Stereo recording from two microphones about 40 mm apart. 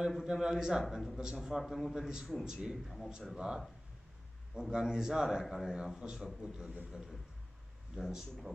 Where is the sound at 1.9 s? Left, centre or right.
Centre.